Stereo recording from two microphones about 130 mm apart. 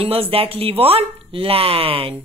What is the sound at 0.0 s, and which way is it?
Speech, 50° right (ahead or behind).